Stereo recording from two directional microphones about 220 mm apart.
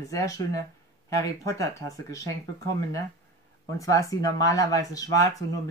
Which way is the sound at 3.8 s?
15° left (ahead or behind).